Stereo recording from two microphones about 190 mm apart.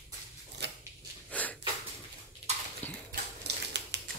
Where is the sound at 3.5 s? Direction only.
65° right (ahead or behind).